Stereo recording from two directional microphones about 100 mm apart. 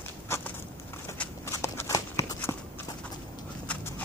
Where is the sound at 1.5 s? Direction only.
30° left (ahead or behind).